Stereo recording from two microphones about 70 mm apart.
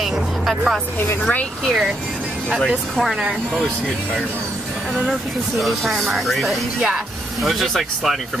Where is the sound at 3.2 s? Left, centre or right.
Centre.